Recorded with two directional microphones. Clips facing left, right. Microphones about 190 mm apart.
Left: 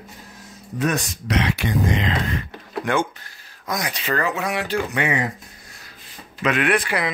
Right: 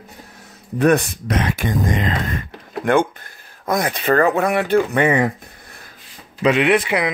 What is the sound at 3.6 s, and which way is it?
Speech, 55° right (ahead or behind).